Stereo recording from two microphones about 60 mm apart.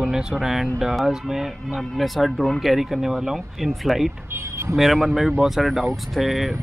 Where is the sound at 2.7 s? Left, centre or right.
Centre.